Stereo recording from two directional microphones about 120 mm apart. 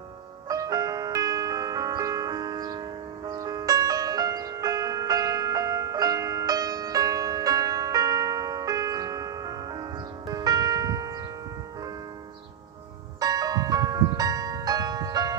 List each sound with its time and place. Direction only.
0.5 s music: 30° right (ahead or behind)
13.2 s music: 30° right (ahead or behind)